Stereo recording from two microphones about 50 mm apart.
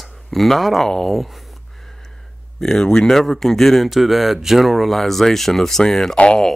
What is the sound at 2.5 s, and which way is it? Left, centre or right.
Speech, centre.